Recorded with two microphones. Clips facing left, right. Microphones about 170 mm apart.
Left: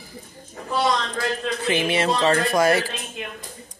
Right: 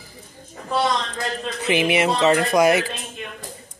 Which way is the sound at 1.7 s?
15° right (ahead or behind).